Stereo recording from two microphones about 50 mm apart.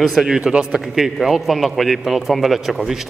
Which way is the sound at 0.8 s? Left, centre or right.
Centre.